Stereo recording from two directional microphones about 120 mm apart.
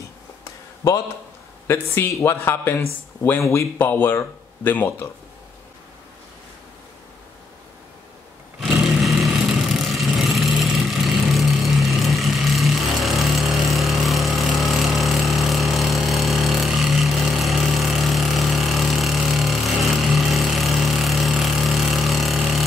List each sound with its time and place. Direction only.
1.7 s speech: 20° left (ahead or behind)
8.5 s a sound: 5° right (ahead or behind)
9.8 s vehicle: centre (ahead or behind)